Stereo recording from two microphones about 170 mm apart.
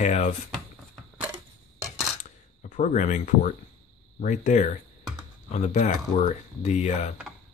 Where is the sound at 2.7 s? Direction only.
45° left (ahead or behind).